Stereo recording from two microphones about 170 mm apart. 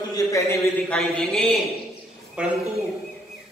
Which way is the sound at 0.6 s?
Centre (ahead or behind).